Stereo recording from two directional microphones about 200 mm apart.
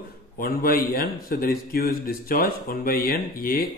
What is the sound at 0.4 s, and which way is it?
A man's voice, 45° left (ahead or behind).